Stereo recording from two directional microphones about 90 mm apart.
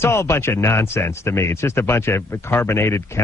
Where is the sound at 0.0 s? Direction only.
30° left (ahead or behind).